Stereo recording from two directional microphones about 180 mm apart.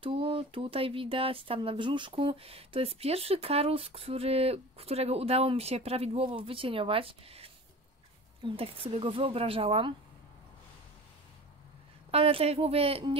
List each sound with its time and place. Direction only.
0.0 s speech: 30° right (ahead or behind)
12.1 s speech: 30° right (ahead or behind)